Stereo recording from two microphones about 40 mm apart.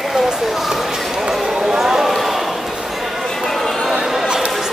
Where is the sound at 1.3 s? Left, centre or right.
Centre.